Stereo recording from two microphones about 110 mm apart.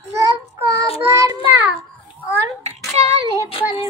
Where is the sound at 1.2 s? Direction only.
30° right (ahead or behind).